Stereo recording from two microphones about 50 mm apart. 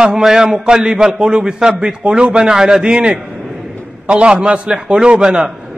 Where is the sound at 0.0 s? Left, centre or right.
Centre.